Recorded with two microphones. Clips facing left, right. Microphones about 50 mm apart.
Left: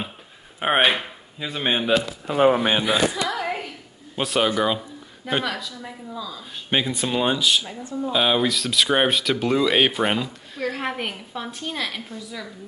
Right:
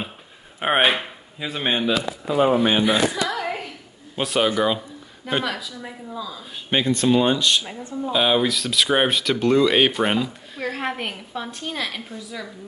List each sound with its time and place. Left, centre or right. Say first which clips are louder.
0.6 s speech: even; centre
2.2 s speech: left 1 dB; left
2.6 s a sound: right 2 dB; centre
4.2 s speech: right 1 dB; centre